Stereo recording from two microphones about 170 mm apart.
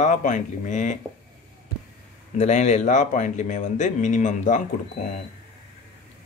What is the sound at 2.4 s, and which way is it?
Speech, 45° left (ahead or behind).